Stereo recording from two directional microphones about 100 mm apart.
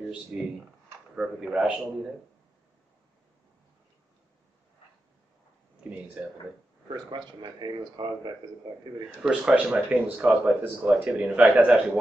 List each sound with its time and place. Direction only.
0.3 s speech: 15° right (ahead or behind)
6.2 s speech: 10° right (ahead or behind)
6.9 s speech: 45° right (ahead or behind)
9.2 s speech: 10° right (ahead or behind)